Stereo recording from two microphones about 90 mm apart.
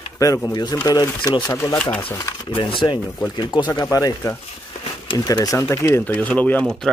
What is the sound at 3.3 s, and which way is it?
Speech, 55° left (ahead or behind).